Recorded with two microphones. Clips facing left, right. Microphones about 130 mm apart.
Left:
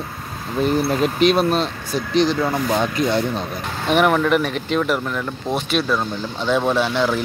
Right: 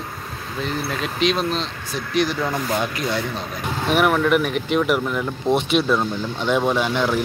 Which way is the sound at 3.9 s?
5° right (ahead or behind).